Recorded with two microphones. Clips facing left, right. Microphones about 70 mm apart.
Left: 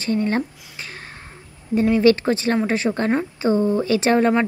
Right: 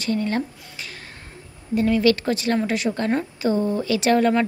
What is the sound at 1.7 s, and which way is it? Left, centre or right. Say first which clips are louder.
Speech: left 3 dB; left.